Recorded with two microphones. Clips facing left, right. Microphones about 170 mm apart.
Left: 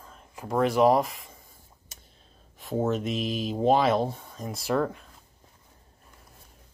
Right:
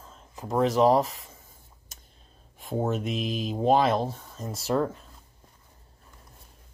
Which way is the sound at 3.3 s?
45° right (ahead or behind).